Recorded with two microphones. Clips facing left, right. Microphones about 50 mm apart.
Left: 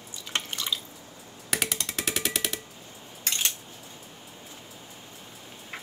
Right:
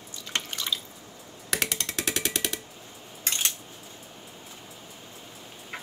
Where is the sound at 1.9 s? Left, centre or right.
Centre.